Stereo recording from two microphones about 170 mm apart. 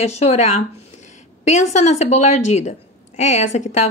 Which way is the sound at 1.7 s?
45° left (ahead or behind).